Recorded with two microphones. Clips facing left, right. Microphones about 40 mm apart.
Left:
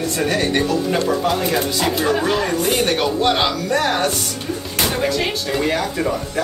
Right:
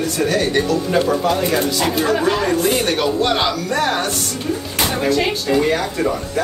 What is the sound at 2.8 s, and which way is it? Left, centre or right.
Speech, centre.